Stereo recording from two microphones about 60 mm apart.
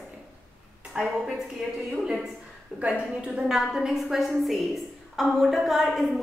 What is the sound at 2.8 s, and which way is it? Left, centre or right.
Speech, centre.